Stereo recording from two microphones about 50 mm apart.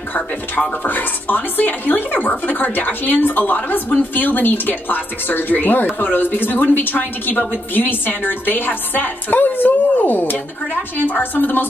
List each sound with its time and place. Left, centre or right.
0.8 s speech: left